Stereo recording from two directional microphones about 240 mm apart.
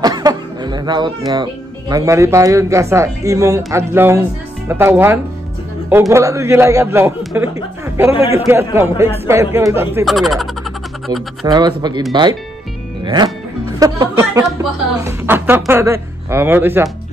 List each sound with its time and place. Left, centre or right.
0.0 s a woman's voice: centre
10.0 s speech: centre
11.4 s a woman's voice: centre